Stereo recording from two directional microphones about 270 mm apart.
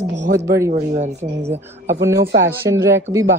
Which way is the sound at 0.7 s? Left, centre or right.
Right.